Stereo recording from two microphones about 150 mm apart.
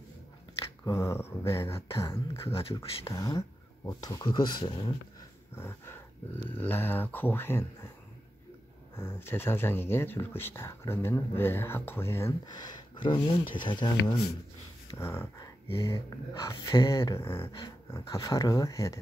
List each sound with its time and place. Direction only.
0.8 s speech: 20° left (ahead or behind)
2.5 s speech: 40° left (ahead or behind)
3.1 s speech: 20° left (ahead or behind)
5.6 s speech: 15° left (ahead or behind)
8.9 s speech: 15° left (ahead or behind)
15.0 s speech: 15° left (ahead or behind)
17.5 s speech: 30° left (ahead or behind)